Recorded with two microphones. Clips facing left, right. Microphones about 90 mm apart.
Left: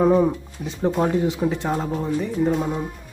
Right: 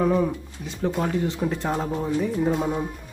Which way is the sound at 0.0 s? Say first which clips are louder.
Left 5 dB; 25° left (ahead or behind).